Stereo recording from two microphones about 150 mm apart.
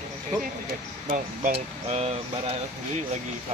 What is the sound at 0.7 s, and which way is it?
Speech, 60° right (ahead or behind).